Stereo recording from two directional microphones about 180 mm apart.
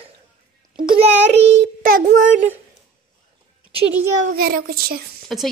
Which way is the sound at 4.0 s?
50° right (ahead or behind).